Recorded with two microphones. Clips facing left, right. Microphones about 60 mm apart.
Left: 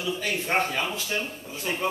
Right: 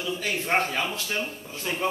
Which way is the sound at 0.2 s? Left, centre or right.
Centre.